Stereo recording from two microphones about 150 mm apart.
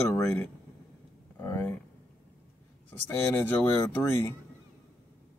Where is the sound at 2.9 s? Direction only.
15° left (ahead or behind).